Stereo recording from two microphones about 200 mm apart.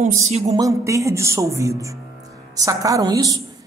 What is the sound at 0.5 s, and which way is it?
Speech, 15° right (ahead or behind).